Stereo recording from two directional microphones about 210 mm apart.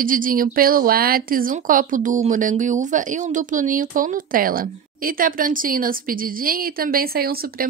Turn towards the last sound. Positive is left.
turn(degrees=-45)  # may be behind; listen again after turning